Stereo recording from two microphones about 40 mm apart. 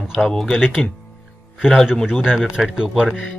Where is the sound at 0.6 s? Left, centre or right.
Centre.